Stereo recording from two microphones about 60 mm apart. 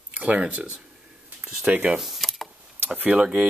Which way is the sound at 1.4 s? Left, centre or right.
Centre.